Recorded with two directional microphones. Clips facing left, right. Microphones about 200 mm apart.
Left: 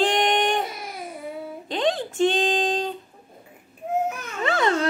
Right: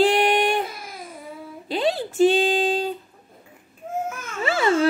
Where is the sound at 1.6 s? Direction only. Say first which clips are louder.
Right 1 dB; 5° right (ahead or behind).